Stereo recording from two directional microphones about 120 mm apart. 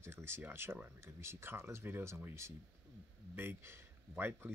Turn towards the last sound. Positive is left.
turn(degrees=-20)  # may be behind; listen again after turning